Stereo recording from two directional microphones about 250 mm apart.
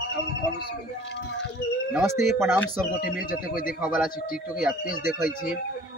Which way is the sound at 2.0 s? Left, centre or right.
Centre.